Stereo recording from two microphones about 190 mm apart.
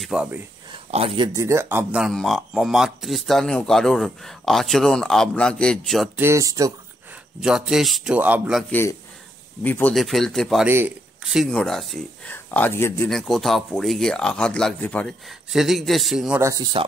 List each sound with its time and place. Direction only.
0.0 s speech: 5° right (ahead or behind)
0.7 s speech: 30° right (ahead or behind); by 6.0 s 5° left (ahead or behind)
6.1 s speech: 15° right (ahead or behind)
7.3 s speech: 5° right (ahead or behind)
9.6 s speech: 10° left (ahead or behind)
13.1 s speech: centre (ahead or behind)
16.3 s speech: 15° right (ahead or behind)